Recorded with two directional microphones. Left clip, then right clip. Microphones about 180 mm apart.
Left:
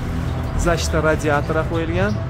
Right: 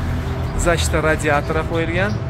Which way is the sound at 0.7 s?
25° left (ahead or behind).